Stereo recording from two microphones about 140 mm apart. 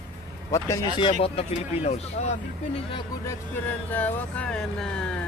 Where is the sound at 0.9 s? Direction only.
40° left (ahead or behind).